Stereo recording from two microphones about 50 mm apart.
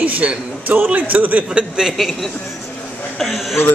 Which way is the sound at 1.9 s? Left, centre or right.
Centre.